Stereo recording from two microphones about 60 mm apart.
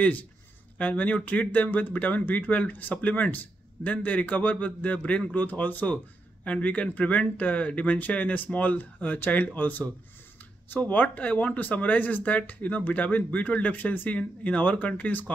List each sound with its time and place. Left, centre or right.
0.7 s speech: left